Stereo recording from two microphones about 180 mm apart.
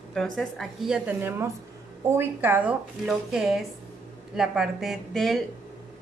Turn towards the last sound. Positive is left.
turn(degrees=0)  # may be behind; listen again after turning